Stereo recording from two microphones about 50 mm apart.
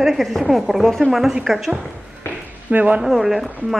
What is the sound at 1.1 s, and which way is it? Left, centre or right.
Speech, centre.